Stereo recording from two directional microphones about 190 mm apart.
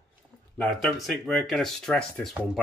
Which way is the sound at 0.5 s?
5° left (ahead or behind).